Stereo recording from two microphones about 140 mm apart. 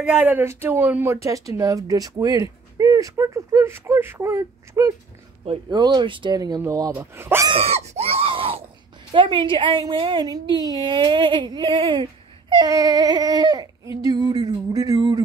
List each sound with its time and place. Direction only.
0.0 s speech: 10° right (ahead or behind)
5.4 s speech: 45° right (ahead or behind)
5.8 s speech: 30° right (ahead or behind)
7.5 s a sound: 45° right (ahead or behind)
9.1 s speech: 35° right (ahead or behind)